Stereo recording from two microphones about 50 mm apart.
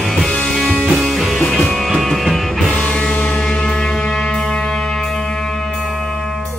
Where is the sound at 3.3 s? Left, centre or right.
Centre.